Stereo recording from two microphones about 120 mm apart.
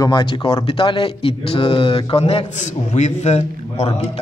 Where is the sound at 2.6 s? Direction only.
80° left; by 4.1 s 60° left (ahead or behind).